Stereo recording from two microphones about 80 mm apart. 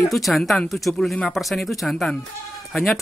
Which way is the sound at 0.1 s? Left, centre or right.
Centre.